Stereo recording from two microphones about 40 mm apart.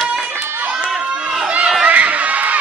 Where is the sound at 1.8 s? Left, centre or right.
Right.